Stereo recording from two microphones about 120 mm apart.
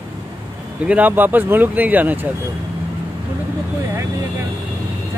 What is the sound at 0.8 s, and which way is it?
Speech, 15° right (ahead or behind).